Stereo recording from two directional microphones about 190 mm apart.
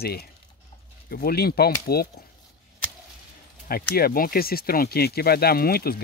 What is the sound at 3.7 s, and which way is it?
Speech, 50° left (ahead or behind).